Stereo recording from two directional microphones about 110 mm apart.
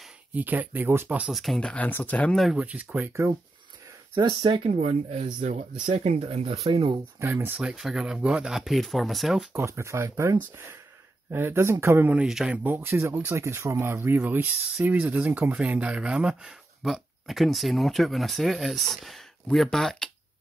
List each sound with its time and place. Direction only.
0.3 s speech: 15° right (ahead or behind)
1.3 s speech: centre (ahead or behind)
2.5 s speech: 10° right (ahead or behind)
4.1 s speech: 45° right (ahead or behind)
4.6 s speech: 85° right
5.9 s speech: 65° right (ahead or behind)
7.2 s speech: 20° right (ahead or behind)
7.6 s speech: 5° right (ahead or behind)
9.5 s speech: 25° right (ahead or behind)
12.3 s speech: 5° right (ahead or behind)
12.6 s speech: 20° right (ahead or behind); by 20.1 s 5° left (ahead or behind)